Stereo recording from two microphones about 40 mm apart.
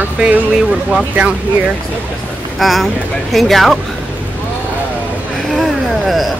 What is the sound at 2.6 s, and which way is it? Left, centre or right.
Speech, centre.